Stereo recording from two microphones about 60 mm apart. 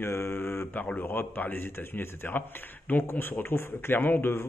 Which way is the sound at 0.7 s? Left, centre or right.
Left.